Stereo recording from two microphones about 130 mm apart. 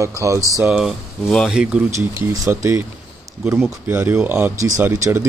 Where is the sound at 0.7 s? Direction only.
5° right (ahead or behind).